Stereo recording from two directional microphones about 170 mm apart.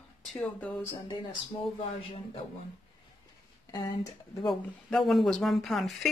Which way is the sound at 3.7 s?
20° left (ahead or behind).